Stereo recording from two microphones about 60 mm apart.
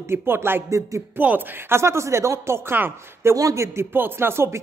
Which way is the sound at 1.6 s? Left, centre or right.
Right.